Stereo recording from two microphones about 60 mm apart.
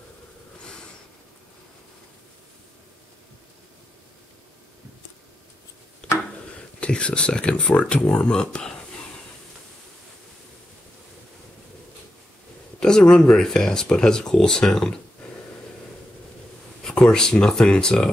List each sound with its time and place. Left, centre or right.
6.0 s a sound: centre
6.8 s speech: centre
12.8 s speech: centre
16.8 s speech: centre